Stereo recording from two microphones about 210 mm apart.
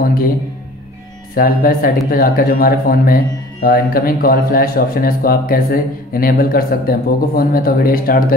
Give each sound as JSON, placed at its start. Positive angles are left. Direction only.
{"t": 0.0, "sound": "speech", "side_deg": 40}
{"t": 1.3, "sound": "speech", "side_deg": 45}